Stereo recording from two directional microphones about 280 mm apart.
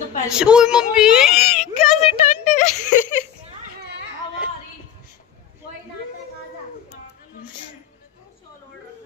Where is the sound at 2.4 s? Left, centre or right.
Left.